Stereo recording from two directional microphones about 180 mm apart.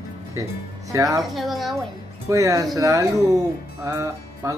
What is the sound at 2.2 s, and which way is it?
Speech, 20° right (ahead or behind).